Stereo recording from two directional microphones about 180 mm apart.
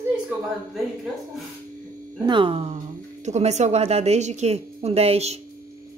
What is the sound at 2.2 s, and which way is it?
A woman's voice, 25° right (ahead or behind).